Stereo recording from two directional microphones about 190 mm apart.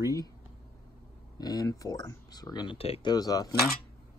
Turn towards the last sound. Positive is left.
turn(degrees=20)  # may be behind; listen again after turning